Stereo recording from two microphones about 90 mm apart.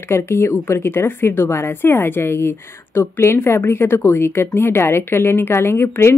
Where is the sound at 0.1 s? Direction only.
25° left (ahead or behind).